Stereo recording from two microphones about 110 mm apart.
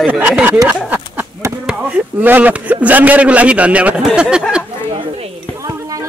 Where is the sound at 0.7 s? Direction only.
15° right (ahead or behind).